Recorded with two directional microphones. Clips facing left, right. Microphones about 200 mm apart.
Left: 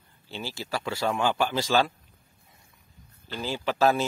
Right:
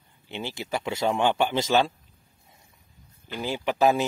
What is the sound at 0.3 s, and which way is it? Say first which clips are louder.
Speech: right 2 dB; 20° right (ahead or behind).